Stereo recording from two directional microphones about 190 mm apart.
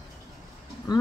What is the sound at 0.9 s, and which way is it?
Speech, 20° left (ahead or behind).